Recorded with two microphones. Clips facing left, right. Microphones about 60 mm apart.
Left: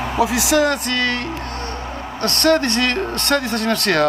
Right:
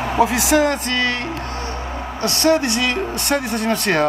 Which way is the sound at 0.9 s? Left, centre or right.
Right.